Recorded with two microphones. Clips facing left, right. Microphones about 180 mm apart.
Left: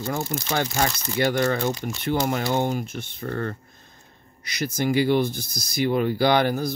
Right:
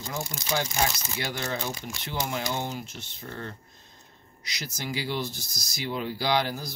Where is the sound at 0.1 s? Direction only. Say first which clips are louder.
Left 4 dB; 55° left (ahead or behind).